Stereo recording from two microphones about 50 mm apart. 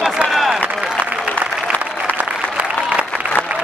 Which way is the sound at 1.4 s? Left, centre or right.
Right.